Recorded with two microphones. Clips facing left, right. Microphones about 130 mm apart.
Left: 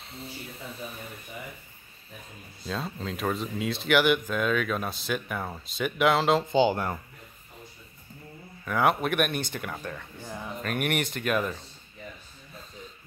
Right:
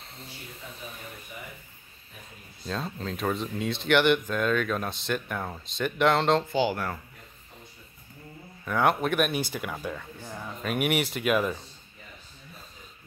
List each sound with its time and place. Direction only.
0.0 s a sound: centre (ahead or behind)
2.6 s speech: centre (ahead or behind)
6.5 s speech: 25° left (ahead or behind)
8.6 s speech: centre (ahead or behind)